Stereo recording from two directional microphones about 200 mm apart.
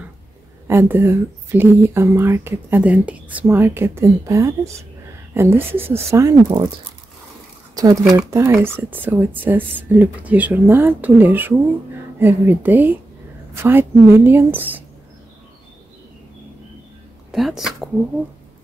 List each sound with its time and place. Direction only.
0.7 s speech: 10° right (ahead or behind)
7.7 s a sound: 20° right (ahead or behind)
8.2 s speech: 10° right (ahead or behind)
17.3 s speech: centre (ahead or behind)